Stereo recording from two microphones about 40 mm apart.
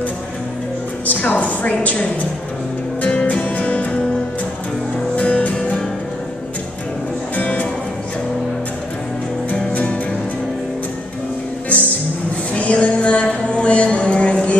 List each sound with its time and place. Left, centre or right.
1.0 s a woman's voice: left
3.1 s music: left
5.1 s music: left
7.3 s music: left
11.7 s music: left
12.5 s a sound: left